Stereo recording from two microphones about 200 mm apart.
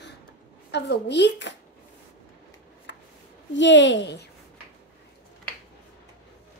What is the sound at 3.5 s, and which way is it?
Speech, 65° left (ahead or behind).